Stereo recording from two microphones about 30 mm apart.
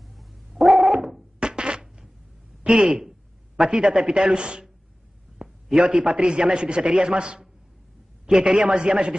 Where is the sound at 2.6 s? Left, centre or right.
Right.